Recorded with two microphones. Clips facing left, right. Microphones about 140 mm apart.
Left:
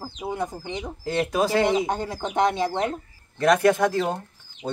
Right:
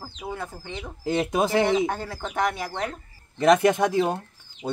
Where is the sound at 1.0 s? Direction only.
20° right (ahead or behind).